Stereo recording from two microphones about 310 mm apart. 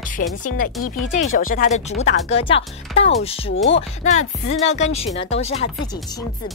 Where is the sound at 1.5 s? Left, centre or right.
Left.